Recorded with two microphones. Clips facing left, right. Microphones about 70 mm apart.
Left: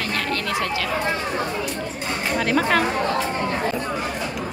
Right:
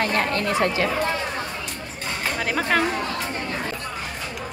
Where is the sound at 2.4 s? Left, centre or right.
Centre.